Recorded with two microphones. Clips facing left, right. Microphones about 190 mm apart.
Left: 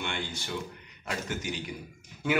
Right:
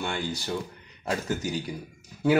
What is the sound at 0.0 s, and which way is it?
A man's voice, 40° right (ahead or behind).